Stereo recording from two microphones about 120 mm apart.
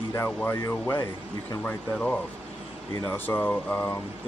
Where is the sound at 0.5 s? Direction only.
20° left (ahead or behind).